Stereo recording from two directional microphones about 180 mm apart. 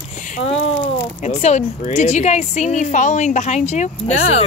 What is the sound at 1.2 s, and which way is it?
A woman's voice, 40° left (ahead or behind).